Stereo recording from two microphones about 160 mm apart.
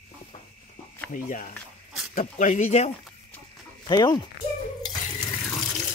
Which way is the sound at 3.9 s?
25° left (ahead or behind).